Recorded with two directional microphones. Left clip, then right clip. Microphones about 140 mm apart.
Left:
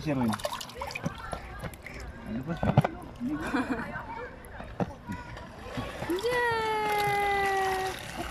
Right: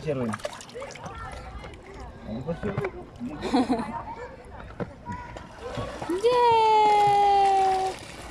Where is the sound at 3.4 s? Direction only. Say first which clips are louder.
Right 8 dB; 35° right (ahead or behind).